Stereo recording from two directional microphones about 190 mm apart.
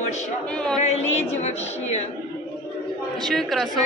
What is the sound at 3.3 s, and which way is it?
Speech, centre (ahead or behind).